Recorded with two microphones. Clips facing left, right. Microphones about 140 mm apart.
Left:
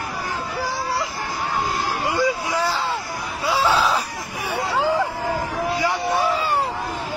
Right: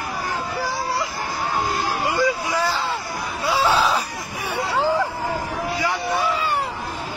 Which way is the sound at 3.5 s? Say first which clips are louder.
Even; centre (ahead or behind).